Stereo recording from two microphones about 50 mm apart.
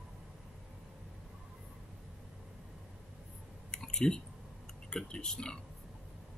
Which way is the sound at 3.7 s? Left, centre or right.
Centre.